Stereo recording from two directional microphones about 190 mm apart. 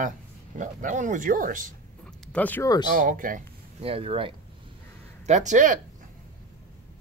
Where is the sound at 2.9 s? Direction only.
45° right (ahead or behind).